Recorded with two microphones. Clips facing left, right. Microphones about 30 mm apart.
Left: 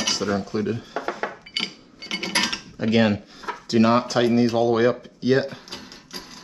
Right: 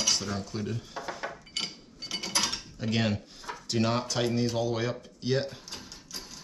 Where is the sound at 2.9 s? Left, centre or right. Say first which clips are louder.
Left 10 dB; left.